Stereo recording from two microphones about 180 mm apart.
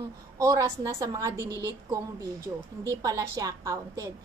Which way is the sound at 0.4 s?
20° right (ahead or behind).